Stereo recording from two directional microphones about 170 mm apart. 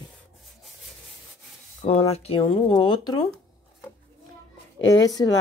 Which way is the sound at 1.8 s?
35° left (ahead or behind).